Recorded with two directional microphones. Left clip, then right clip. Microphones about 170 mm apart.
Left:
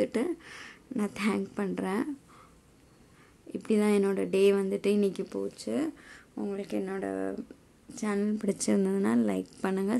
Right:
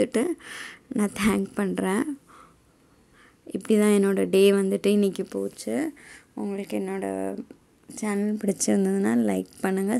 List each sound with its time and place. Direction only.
0.0 s speech: 25° right (ahead or behind)
3.5 s a woman's voice: 30° right (ahead or behind)